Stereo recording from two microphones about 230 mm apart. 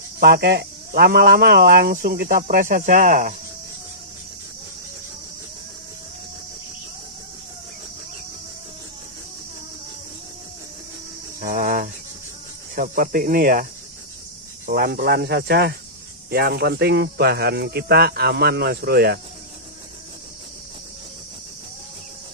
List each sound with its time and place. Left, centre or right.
0.2 s speech: right
11.4 s cricket: right
12.7 s speech: right
14.7 s speech: right